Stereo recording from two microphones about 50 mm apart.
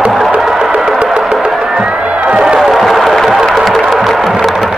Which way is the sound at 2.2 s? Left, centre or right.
Centre.